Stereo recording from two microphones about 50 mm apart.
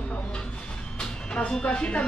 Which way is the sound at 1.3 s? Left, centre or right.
Centre.